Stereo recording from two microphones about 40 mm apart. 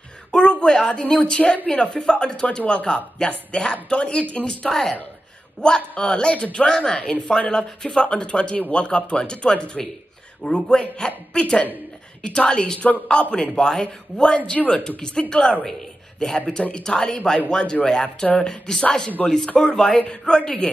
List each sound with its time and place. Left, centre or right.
0.3 s a woman's voice: left
4.6 s speech: centre
5.6 s speech: centre
6.6 s speech: centre
16.7 s speech: centre